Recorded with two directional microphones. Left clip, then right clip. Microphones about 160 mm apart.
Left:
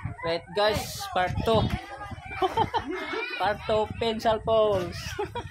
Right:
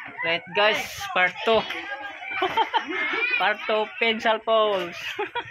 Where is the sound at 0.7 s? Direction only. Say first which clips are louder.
Right 4 dB; centre (ahead or behind).